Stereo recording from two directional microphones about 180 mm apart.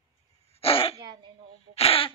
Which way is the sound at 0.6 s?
30° left (ahead or behind).